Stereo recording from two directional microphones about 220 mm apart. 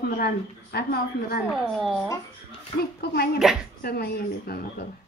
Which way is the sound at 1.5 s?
Centre (ahead or behind).